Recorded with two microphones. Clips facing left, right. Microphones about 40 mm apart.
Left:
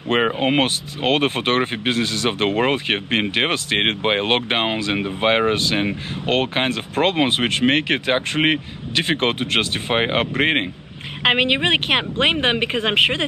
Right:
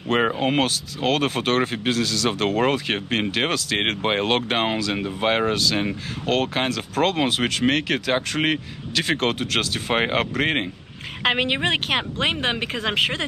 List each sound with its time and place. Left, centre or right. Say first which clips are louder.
0.2 s speech: left 3 dB; left
11.2 s speech: left 4 dB; left